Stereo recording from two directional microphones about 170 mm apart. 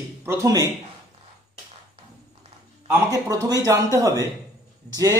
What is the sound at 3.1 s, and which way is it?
Speech, 20° right (ahead or behind).